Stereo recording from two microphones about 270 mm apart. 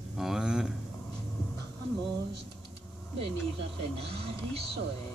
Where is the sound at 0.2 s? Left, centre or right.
Centre.